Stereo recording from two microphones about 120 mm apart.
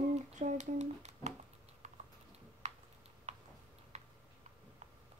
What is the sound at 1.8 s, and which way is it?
Typing, 90° right.